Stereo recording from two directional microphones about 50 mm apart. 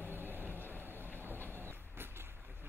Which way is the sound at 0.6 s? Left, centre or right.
Left.